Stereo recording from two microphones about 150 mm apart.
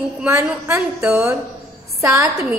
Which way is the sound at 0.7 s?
10° right (ahead or behind).